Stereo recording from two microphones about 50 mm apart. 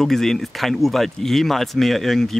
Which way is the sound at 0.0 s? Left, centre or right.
Centre.